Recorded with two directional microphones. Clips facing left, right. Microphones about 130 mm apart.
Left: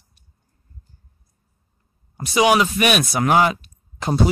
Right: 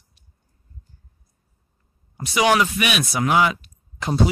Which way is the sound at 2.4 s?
15° left (ahead or behind).